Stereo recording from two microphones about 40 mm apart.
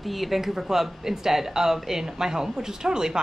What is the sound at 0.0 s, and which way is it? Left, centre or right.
A woman's voice, centre.